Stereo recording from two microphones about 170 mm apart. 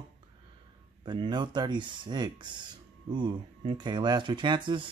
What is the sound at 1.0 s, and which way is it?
Speech, 25° right (ahead or behind).